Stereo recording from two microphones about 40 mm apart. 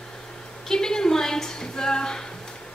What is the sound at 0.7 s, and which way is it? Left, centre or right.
A woman's voice, centre.